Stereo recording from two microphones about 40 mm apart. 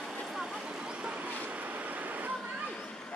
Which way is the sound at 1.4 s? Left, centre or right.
Right.